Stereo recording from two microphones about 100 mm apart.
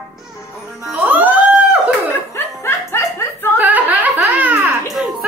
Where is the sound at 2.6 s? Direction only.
30° left (ahead or behind).